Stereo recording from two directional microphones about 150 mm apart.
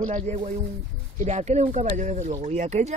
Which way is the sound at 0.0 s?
45° right (ahead or behind).